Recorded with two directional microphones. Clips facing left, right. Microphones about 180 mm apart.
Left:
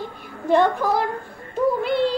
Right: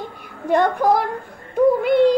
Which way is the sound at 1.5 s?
15° right (ahead or behind).